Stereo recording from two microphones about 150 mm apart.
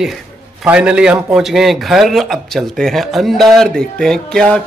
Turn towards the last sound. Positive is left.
turn(degrees=5)  # may be behind; listen again after turning